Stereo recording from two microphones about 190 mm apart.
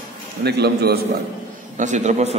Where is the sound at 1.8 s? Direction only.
40° right (ahead or behind).